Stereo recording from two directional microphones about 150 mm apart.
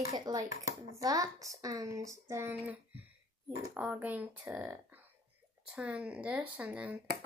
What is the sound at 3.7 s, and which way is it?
Speech, 10° right (ahead or behind).